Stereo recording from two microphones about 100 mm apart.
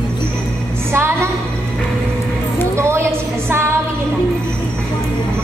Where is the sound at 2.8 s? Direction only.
25° right (ahead or behind).